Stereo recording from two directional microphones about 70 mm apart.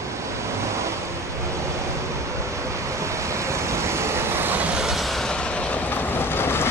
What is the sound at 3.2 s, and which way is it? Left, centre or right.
Vehicle, right.